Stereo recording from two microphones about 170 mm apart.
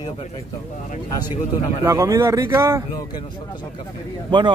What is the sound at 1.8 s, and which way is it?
Speech, 20° right (ahead or behind).